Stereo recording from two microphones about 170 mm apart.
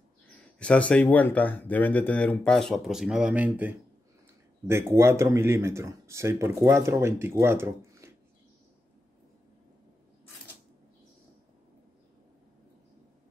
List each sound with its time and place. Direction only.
0.3 s speech: 5° left (ahead or behind); by 8.1 s 15° right (ahead or behind)